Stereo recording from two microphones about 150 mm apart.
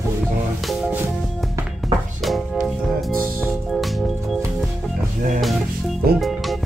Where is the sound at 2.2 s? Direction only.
Centre (ahead or behind).